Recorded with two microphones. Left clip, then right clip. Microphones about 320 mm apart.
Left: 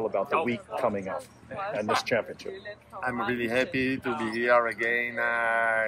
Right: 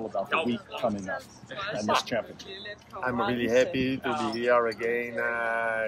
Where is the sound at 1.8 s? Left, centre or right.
Left.